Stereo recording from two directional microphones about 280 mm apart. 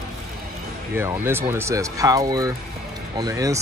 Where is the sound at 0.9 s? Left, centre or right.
Centre.